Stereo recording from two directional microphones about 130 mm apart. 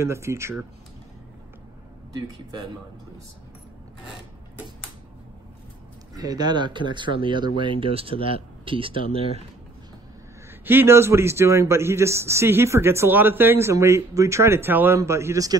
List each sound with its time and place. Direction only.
0.0 s a man's voice: 20° right (ahead or behind)
6.1 s speech: 30° right (ahead or behind)
10.6 s a man's voice: 15° right (ahead or behind)